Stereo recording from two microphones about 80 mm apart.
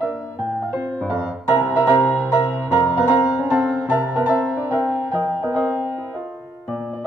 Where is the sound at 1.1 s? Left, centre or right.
Centre.